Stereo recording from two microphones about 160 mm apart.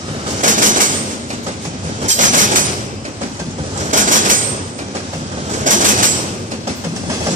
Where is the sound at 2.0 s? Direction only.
55° right (ahead or behind).